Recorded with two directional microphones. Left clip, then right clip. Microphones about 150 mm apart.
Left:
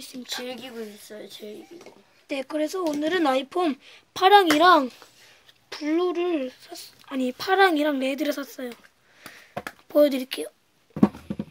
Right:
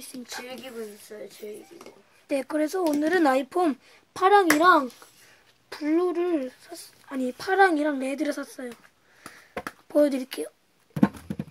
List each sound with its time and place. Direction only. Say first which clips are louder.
0.2 s speech: left 5 dB; centre (ahead or behind)
1.0 s speech: even; 35° left (ahead or behind)
2.2 s speech: right 1 dB; 20° right (ahead or behind)
3.8 s speech: left 2 dB; centre (ahead or behind)
5.7 s speech: even; 10° right (ahead or behind)
9.8 s speech: left 3 dB; 5° right (ahead or behind)